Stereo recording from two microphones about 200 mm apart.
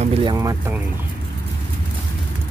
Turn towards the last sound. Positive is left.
turn(degrees=-10)  # may be behind; listen again after turning